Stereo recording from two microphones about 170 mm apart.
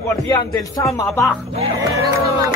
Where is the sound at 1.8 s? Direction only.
20° right (ahead or behind).